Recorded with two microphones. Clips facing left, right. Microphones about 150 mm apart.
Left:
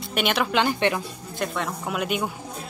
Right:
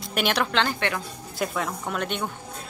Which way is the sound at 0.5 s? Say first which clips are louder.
Left 3 dB; 15° left (ahead or behind).